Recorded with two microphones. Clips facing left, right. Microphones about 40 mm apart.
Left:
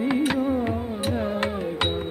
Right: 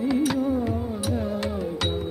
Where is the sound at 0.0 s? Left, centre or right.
Left.